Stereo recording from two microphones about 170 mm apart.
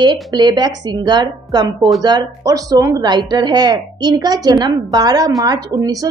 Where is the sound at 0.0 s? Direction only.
25° right (ahead or behind).